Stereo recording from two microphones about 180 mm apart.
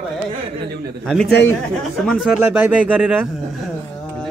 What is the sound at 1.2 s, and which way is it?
Speech, 70° left (ahead or behind).